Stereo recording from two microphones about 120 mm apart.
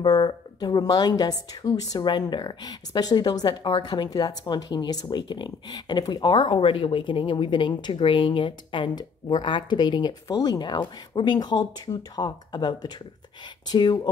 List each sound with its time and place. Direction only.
0.0 s speech: 35° left (ahead or behind)